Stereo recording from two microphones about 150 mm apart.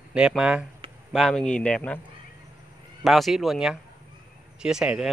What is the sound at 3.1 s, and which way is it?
Speech, centre (ahead or behind).